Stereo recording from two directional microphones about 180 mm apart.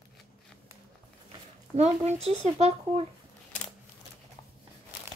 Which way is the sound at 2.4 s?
35° right (ahead or behind).